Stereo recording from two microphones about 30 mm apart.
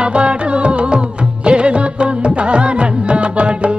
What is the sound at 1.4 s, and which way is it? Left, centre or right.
Music of bollywood, right.